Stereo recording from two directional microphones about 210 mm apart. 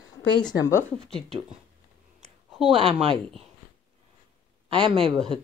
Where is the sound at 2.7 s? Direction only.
25° right (ahead or behind).